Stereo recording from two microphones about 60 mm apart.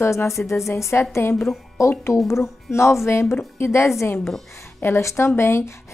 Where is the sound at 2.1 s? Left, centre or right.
Left.